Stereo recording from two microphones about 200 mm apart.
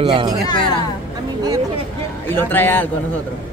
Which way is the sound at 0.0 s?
25° right (ahead or behind).